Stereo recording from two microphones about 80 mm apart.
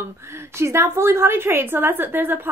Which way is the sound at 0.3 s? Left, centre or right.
Right.